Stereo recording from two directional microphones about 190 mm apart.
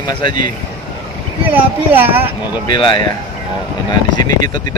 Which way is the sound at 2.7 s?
25° left (ahead or behind).